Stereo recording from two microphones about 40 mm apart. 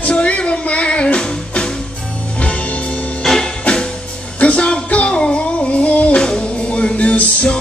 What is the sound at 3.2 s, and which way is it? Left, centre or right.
Music, centre.